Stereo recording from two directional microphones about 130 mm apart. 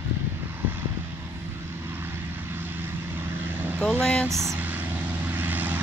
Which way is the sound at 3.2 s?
15° right (ahead or behind).